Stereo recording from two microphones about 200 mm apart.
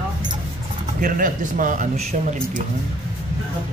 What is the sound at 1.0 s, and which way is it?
A man's voice, 45° right (ahead or behind).